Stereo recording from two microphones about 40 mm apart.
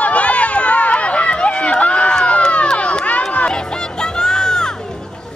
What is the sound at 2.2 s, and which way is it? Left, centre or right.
Crowd, left.